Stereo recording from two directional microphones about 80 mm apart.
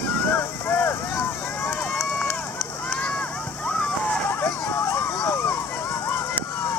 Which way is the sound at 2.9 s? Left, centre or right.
Centre.